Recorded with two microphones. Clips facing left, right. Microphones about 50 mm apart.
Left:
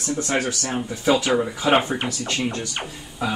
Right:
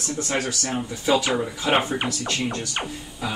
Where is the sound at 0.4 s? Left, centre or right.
Centre.